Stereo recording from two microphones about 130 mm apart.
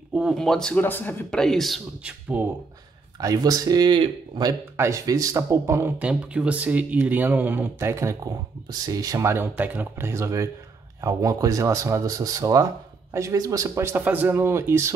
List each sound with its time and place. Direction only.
0.1 s speech: 5° right (ahead or behind)
0.4 s speech: 5° left (ahead or behind)
2.3 s speech: 10° right (ahead or behind)
3.2 s speech: 30° right (ahead or behind)
5.9 s speech: 10° right (ahead or behind)